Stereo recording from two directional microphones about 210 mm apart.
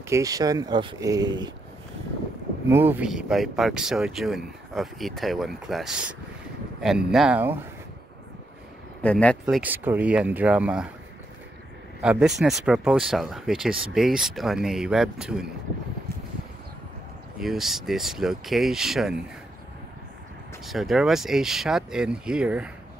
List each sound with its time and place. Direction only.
0.1 s speech: 15° right (ahead or behind)
2.7 s speech: 10° right (ahead or behind)
9.0 s speech: 5° left (ahead or behind)
9.6 s speech: 10° right (ahead or behind)
12.0 s speech: 5° right (ahead or behind)
17.4 s speech: centre (ahead or behind)
20.6 s speech: centre (ahead or behind)